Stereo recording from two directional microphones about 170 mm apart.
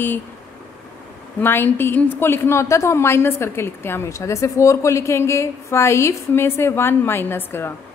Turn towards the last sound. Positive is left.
turn(degrees=15)  # may be behind; listen again after turning